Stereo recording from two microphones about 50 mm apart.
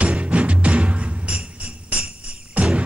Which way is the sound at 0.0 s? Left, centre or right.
Right.